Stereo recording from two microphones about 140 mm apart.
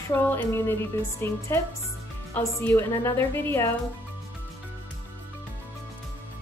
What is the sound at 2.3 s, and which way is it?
A woman's voice, 15° left (ahead or behind).